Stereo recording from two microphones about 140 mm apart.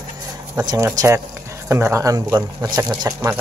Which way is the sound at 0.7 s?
25° right (ahead or behind).